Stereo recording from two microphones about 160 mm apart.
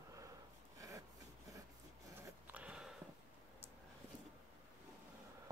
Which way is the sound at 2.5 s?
5° right (ahead or behind).